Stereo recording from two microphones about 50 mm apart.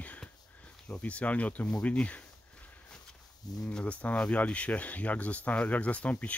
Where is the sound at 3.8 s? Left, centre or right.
Left.